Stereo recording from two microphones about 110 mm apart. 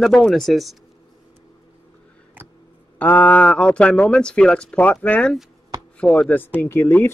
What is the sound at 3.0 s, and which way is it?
Speech, 15° left (ahead or behind).